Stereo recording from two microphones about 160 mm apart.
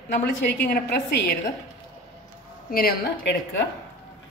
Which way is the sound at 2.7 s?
80° left.